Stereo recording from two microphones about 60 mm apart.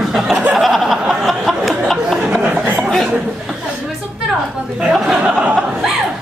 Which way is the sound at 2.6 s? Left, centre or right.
Right.